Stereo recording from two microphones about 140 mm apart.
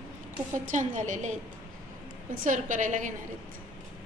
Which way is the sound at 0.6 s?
65° right (ahead or behind).